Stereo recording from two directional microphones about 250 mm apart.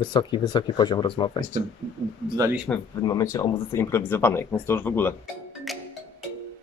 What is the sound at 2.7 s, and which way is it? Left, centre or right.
Speech, centre.